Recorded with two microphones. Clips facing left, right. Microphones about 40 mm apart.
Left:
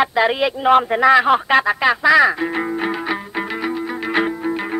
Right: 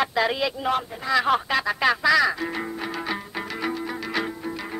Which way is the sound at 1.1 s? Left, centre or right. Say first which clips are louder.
Left 7 dB; centre.